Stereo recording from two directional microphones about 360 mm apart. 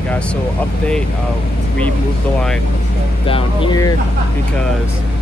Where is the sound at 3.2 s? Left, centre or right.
Centre.